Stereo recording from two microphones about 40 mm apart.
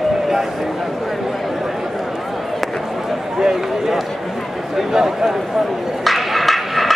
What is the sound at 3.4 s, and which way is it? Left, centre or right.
Run, centre.